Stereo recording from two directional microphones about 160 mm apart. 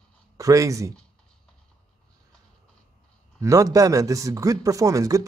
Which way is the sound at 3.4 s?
20° right (ahead or behind).